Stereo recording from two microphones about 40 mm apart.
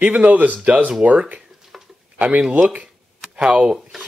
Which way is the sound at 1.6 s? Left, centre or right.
Centre.